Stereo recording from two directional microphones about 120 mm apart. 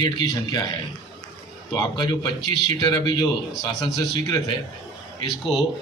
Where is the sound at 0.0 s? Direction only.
35° left (ahead or behind).